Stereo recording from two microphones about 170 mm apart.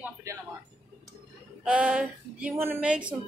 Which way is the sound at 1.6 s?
5° right (ahead or behind).